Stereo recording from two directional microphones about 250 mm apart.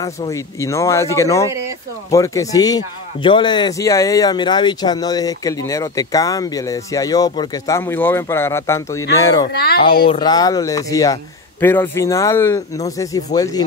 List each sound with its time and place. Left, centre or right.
0.0 s speech: centre
9.5 s speech: left
10.0 s speech: centre